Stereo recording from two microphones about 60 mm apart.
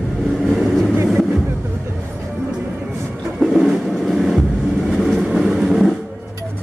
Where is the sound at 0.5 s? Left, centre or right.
Centre.